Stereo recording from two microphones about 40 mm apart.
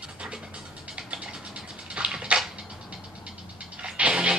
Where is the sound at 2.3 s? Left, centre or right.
Right.